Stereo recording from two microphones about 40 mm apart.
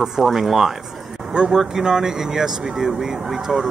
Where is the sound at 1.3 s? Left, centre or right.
Centre.